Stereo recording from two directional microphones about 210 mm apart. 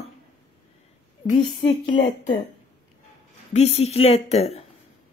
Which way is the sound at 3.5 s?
30° left (ahead or behind).